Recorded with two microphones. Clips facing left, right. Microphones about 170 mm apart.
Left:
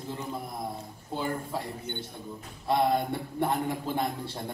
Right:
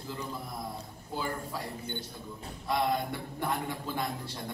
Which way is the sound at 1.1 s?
25° left (ahead or behind).